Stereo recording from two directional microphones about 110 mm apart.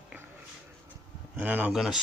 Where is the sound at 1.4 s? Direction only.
15° right (ahead or behind).